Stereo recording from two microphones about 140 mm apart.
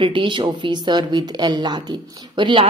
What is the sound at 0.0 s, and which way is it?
Speech, 35° right (ahead or behind).